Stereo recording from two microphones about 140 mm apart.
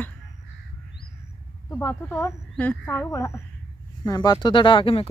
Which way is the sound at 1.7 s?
15° left (ahead or behind).